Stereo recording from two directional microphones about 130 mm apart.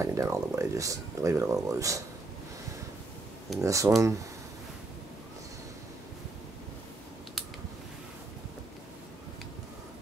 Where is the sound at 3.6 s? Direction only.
25° right (ahead or behind).